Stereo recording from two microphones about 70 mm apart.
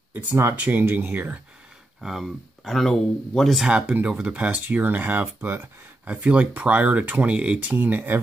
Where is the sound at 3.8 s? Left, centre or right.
Right.